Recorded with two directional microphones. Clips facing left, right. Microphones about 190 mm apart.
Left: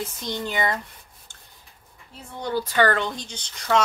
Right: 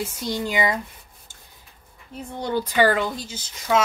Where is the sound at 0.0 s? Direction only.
10° right (ahead or behind).